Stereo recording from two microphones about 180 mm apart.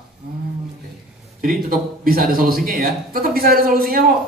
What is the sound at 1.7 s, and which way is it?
A man's voice, 55° right (ahead or behind).